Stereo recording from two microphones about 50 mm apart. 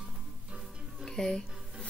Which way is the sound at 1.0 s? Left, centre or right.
Centre.